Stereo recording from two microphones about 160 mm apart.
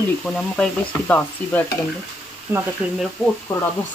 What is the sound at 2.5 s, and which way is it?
Speech, 5° right (ahead or behind).